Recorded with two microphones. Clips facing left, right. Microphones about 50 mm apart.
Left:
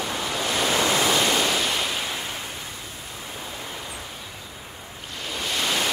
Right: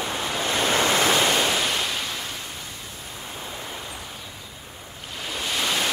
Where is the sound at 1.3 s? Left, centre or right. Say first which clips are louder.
Even; centre.